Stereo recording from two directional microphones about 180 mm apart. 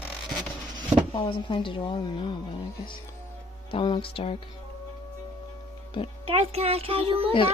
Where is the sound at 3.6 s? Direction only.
30° left (ahead or behind).